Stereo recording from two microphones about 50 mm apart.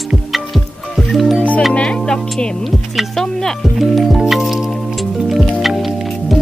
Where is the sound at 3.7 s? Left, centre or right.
Centre.